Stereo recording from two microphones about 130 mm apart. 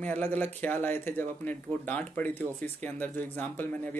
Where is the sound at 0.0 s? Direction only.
10° left (ahead or behind).